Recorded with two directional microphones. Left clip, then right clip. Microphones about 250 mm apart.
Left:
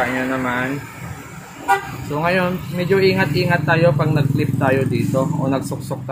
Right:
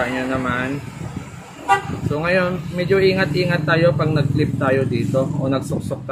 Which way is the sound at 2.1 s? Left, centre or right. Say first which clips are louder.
Even; centre.